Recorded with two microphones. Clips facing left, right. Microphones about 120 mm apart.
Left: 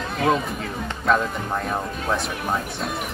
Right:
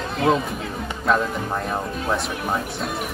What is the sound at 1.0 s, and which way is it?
Speech, centre (ahead or behind).